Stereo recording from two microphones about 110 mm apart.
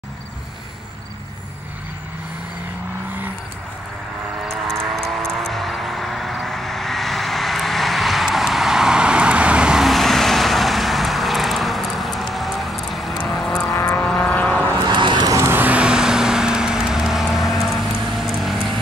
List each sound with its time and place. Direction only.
4.5 s a sound: centre (ahead or behind)
13.2 s vehicle: 5° left (ahead or behind)
14.8 s vehicle: 45° right (ahead or behind)
15.3 s vehicle: 20° right (ahead or behind); by 18.8 s centre (ahead or behind)